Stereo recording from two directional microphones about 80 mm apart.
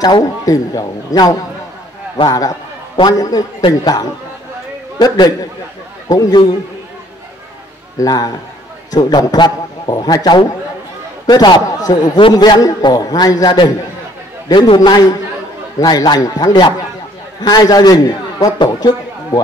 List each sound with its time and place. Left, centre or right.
0.0 s a man's voice: left
4.9 s a man's voice: left
8.0 s a man's voice: left
11.6 s a man's voice: left
12.2 s a man's voice: left